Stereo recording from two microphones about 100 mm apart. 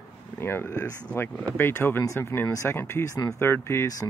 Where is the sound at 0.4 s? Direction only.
20° left (ahead or behind).